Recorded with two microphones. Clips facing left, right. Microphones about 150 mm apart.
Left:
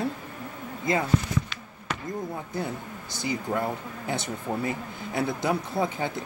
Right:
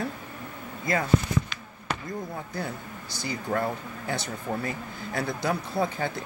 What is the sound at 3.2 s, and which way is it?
Speech, 20° left (ahead or behind).